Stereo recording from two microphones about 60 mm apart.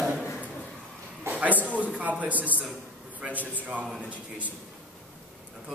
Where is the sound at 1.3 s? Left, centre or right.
Right.